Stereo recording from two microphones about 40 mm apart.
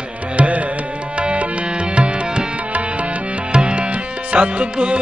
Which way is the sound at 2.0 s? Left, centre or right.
Right.